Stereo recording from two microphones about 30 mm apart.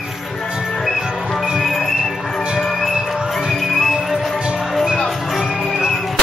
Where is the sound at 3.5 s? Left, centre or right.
Centre.